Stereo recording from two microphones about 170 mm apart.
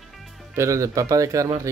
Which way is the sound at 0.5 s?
15° right (ahead or behind).